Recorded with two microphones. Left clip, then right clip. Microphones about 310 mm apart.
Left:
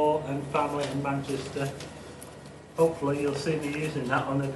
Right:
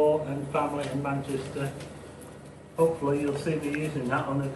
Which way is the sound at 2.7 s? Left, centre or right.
Centre.